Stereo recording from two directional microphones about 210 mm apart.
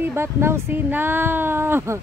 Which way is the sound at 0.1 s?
10° right (ahead or behind).